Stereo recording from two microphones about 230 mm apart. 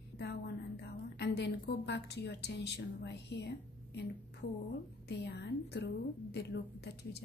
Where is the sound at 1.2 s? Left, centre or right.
Left.